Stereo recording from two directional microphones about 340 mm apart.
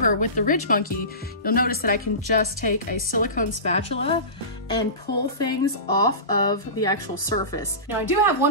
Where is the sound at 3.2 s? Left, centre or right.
Left.